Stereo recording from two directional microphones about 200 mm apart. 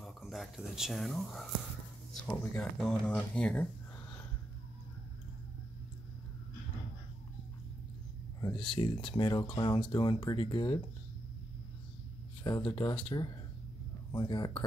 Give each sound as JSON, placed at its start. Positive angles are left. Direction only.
{"t": 0.0, "sound": "speech", "side_deg": 0}
{"t": 8.4, "sound": "speech", "side_deg": 25}
{"t": 12.4, "sound": "speech", "side_deg": 25}